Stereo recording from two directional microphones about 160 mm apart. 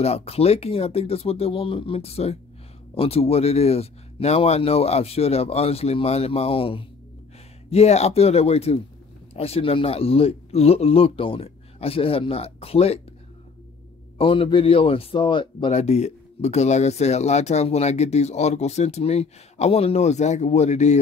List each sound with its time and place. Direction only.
0.0 s speech: 40° left (ahead or behind)
14.1 s speech: 35° left (ahead or behind)
15.7 s speech: 45° left (ahead or behind)